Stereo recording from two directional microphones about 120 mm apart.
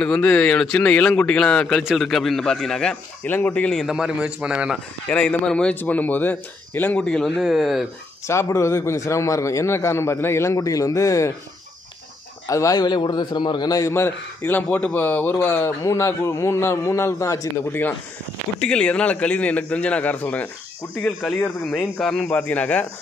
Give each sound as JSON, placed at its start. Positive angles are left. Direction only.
{"t": 0.0, "sound": "a man's voice", "side_deg": 10}
{"t": 3.8, "sound": "a man's voice", "side_deg": -5}
{"t": 5.1, "sound": "speech", "side_deg": 10}
{"t": 8.3, "sound": "a man's voice", "side_deg": 25}
{"t": 12.4, "sound": "a man's voice", "side_deg": 30}
{"t": 18.6, "sound": "speech", "side_deg": 5}